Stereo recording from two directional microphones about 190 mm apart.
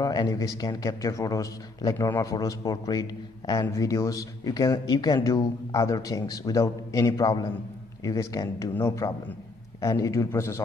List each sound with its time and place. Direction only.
0.0 s a man's voice: 20° left (ahead or behind)